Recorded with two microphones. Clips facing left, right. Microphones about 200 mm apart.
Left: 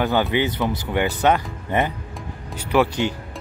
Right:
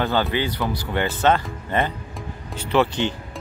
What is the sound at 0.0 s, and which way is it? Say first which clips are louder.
Speech: left 2 dB; 15° left (ahead or behind).